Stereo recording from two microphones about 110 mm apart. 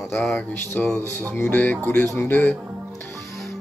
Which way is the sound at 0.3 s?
15° left (ahead or behind).